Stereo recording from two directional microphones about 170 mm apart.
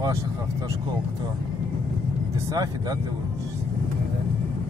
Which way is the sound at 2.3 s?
20° right (ahead or behind).